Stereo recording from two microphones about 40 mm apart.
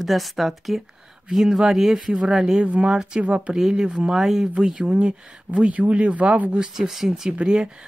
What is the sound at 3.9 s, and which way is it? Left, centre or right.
Speech, centre.